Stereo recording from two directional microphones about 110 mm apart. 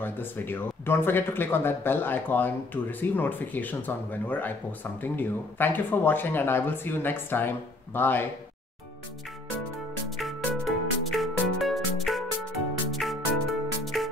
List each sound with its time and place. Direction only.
0.0 s speech: 20° left (ahead or behind)
10.0 s music: centre (ahead or behind)